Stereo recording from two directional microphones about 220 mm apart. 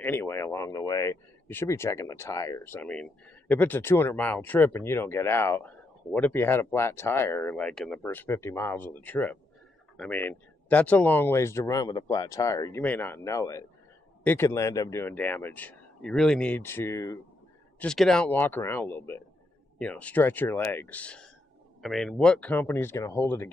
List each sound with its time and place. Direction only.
0.0 s speech: 10° left (ahead or behind)
17.7 s speech: 5° left (ahead or behind)